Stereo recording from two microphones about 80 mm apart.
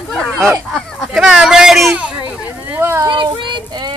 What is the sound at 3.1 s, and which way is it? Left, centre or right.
Child singing, right.